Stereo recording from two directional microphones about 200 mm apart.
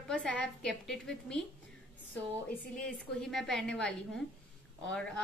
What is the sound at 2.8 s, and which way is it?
A woman's voice, 5° left (ahead or behind).